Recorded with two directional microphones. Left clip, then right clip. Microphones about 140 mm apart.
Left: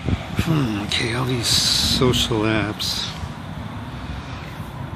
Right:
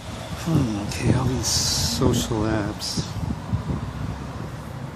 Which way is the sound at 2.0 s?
Centre (ahead or behind).